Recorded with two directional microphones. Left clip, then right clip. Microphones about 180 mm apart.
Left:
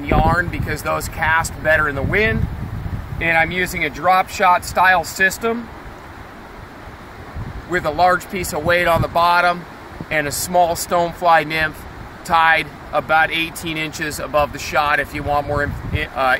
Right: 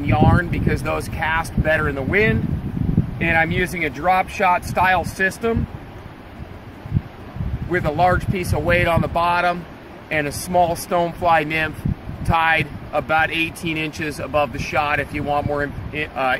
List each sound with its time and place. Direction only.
0.0 s speech: 5° left (ahead or behind)
7.7 s speech: centre (ahead or behind)